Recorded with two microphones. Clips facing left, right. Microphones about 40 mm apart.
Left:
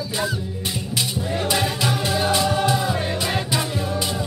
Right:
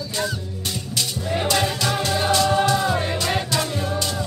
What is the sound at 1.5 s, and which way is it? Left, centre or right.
Music, centre.